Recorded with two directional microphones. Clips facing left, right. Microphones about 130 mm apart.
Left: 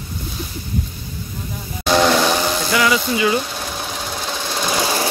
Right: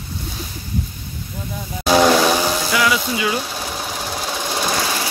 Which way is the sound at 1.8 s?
5° right (ahead or behind).